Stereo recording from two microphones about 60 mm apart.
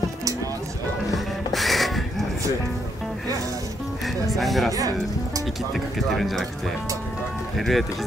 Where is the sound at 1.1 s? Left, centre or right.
Centre.